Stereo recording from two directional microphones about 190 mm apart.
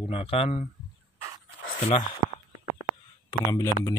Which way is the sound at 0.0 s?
30° left (ahead or behind).